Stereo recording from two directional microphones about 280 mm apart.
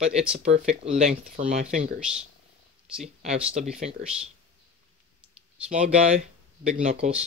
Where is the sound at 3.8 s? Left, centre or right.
Right.